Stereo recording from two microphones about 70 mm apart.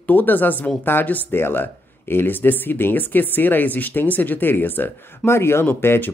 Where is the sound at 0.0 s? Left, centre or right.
Left.